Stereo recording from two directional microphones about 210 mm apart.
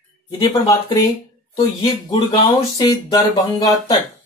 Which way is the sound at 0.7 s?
15° left (ahead or behind).